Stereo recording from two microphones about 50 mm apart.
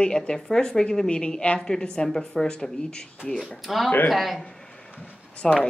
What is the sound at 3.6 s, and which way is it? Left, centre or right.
Speech, centre.